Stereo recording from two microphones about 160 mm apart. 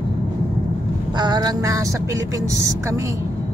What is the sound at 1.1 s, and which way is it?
Vehicle, 25° right (ahead or behind).